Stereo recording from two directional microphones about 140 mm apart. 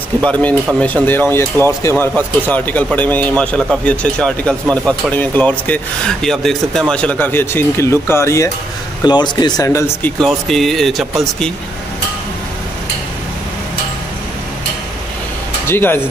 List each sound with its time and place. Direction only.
0.2 s speech: 10° left (ahead or behind)
9.0 s speech: 30° left (ahead or behind)
10.2 s speech: centre (ahead or behind)
15.6 s speech: 15° left (ahead or behind)